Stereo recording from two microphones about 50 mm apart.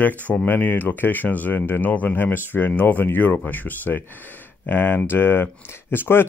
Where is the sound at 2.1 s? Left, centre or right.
Left.